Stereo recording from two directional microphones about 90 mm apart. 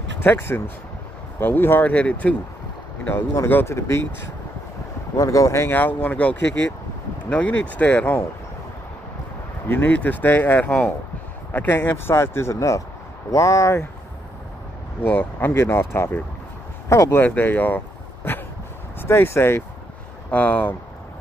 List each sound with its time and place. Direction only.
0.2 s speech: 25° left (ahead or behind)
5.1 s speech: 40° left (ahead or behind); by 8.2 s 15° left (ahead or behind)
9.7 s speech: 20° left (ahead or behind); by 13.8 s 35° left (ahead or behind)
15.0 s speech: 20° left (ahead or behind)
17.2 s speech: 20° left (ahead or behind)
20.2 s speech: 15° left (ahead or behind)